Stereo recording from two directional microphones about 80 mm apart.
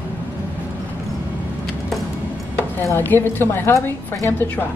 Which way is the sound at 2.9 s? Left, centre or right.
Left.